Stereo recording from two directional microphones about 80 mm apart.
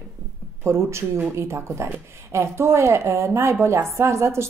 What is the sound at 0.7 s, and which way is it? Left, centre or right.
A woman's voice, right.